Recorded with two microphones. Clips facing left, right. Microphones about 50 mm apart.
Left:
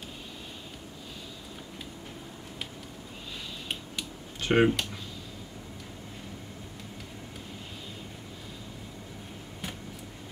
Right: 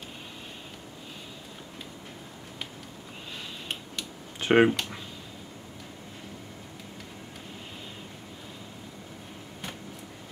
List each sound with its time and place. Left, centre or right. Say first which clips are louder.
4.4 s speech: right 3 dB; centre